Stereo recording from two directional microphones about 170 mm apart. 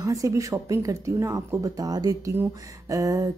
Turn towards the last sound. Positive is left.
turn(degrees=-20)  # may be behind; listen again after turning